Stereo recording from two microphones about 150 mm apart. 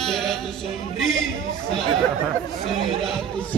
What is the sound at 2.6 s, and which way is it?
Music, centre (ahead or behind).